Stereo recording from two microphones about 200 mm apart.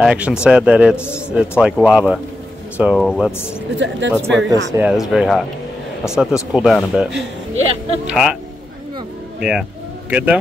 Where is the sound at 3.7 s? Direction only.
65° right (ahead or behind).